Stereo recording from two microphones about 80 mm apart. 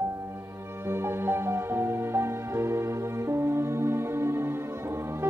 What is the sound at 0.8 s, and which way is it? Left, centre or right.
Music, right.